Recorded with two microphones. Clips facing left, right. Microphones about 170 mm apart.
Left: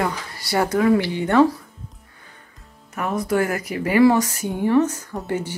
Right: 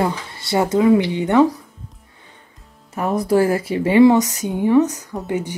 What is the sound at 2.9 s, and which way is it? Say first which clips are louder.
Speech: right 4 dB; 35° right (ahead or behind).